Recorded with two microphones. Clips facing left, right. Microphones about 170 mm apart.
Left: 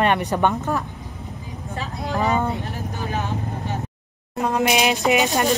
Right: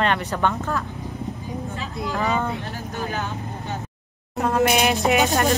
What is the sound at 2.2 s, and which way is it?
Speech, 20° left (ahead or behind).